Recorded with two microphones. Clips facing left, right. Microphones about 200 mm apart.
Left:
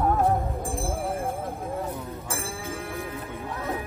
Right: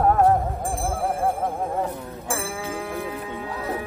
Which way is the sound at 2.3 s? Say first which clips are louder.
Right 6 dB; 75° right (ahead or behind).